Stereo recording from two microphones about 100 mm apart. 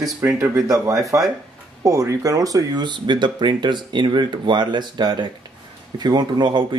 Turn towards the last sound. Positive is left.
turn(degrees=-45)  # may be behind; listen again after turning